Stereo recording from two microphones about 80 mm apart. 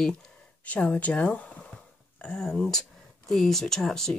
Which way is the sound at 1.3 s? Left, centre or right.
Centre.